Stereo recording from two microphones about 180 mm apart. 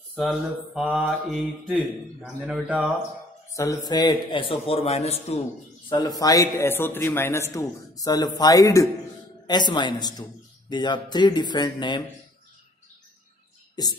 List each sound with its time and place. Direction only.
0.1 s mantra: 5° left (ahead or behind)
3.5 s a man's voice: 15° left (ahead or behind); by 5.4 s 35° left (ahead or behind)
5.9 s a man's voice: 20° left (ahead or behind)